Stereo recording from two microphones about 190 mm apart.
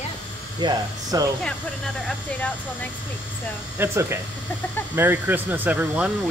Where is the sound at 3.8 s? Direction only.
15° right (ahead or behind).